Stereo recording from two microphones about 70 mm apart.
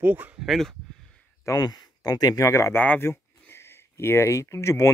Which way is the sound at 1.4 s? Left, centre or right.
Left.